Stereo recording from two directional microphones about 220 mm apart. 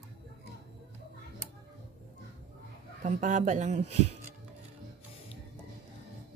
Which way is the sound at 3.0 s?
35° right (ahead or behind).